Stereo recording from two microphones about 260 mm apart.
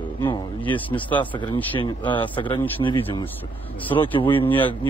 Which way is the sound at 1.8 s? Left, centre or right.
Centre.